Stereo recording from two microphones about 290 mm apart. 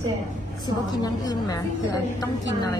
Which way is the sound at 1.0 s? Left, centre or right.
Centre.